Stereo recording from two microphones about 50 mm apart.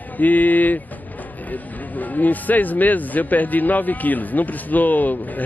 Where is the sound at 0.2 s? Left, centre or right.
Left.